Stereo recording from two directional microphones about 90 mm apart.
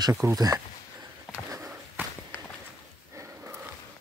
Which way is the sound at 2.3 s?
20° left (ahead or behind).